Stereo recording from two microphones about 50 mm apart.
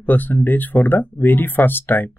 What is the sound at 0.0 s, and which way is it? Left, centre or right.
Speech, left.